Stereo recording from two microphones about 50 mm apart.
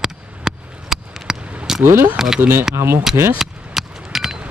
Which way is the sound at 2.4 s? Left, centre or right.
Right.